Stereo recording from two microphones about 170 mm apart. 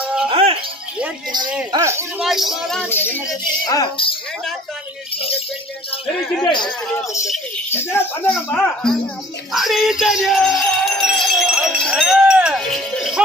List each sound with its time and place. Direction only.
0.0 s music: 5° right (ahead or behind)
0.3 s music: 35° right (ahead or behind)
1.7 s speech: 15° right (ahead or behind)
2.2 s speech: centre (ahead or behind)
2.9 s speech: 10° left (ahead or behind)
3.6 s speech: 25° left (ahead or behind)
6.4 s speech: 30° left (ahead or behind)
7.2 s speech: centre (ahead or behind)
7.7 s speech: 15° left (ahead or behind)
9.5 s music: centre (ahead or behind)